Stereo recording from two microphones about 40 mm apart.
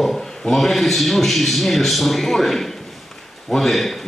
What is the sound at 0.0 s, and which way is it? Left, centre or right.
A man's voice, centre.